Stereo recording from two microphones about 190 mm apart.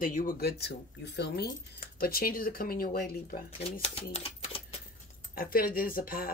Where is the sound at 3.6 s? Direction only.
30° left (ahead or behind).